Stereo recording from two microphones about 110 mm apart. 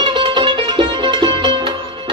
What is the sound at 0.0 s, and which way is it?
Music, 45° right (ahead or behind).